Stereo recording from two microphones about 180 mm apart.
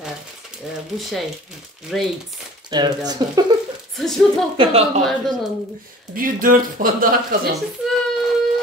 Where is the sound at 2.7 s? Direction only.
25° right (ahead or behind).